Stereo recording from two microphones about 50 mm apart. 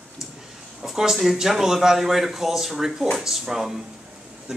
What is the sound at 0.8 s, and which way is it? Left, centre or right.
Speech, centre.